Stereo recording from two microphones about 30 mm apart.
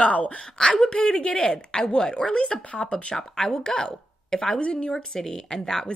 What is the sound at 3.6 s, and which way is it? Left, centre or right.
Speech, left.